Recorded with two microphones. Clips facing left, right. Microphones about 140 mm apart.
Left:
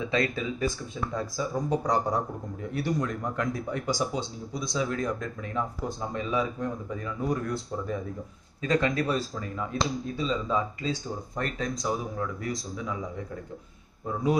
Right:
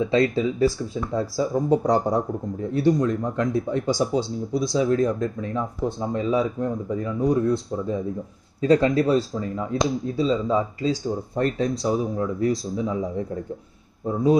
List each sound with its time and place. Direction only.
0.1 s speech: 30° right (ahead or behind)
14.0 s speech: 30° right (ahead or behind)